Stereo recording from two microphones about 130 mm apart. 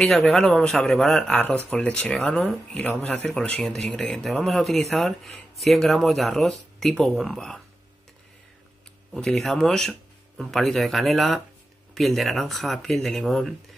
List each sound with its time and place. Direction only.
0.0 s speech: centre (ahead or behind)
9.1 s speech: 5° left (ahead or behind)